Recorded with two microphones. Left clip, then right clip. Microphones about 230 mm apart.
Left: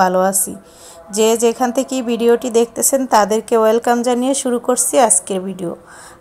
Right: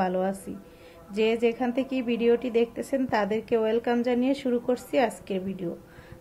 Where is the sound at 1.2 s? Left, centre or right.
Left.